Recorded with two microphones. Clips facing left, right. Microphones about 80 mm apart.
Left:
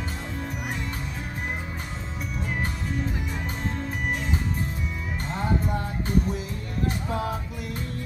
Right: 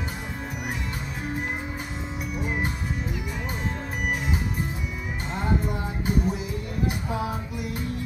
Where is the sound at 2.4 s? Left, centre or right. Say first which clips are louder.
Right 2 dB; centre.